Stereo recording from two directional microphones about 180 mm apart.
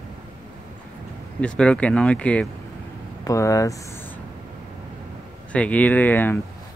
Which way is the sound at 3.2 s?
15° left (ahead or behind).